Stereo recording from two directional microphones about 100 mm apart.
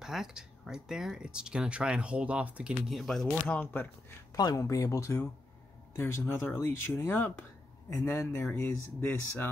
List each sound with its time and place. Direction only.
0.0 s speech: 5° right (ahead or behind)
2.9 s speech: centre (ahead or behind)
3.4 s speech: 15° left (ahead or behind)
4.4 s speech: 40° left (ahead or behind)